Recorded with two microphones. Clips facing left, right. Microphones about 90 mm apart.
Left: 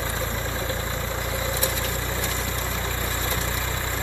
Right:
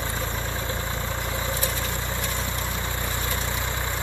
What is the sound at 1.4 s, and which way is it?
Vehicle, 15° left (ahead or behind).